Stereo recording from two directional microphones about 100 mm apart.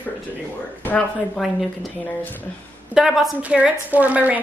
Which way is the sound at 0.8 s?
15° left (ahead or behind).